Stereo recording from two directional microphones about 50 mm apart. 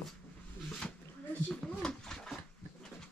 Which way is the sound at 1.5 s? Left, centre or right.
Centre.